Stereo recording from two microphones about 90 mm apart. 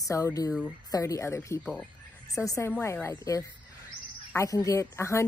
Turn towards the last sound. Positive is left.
turn(degrees=35)  # may be behind; listen again after turning